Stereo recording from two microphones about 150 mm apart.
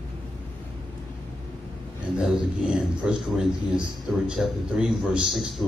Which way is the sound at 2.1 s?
5° right (ahead or behind).